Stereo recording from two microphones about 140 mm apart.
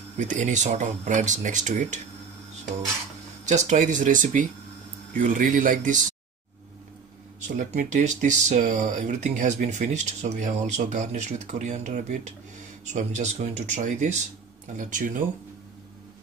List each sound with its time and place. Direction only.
0.2 s speech: 60° right (ahead or behind)
3.4 s speech: 55° right (ahead or behind)
7.3 s speech: 65° right (ahead or behind)
14.8 s speech: 70° right (ahead or behind)